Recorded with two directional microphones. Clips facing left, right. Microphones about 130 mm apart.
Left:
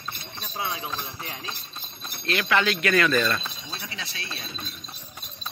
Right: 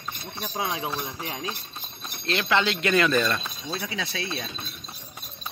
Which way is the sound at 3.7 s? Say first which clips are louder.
Right 11 dB; 50° right (ahead or behind).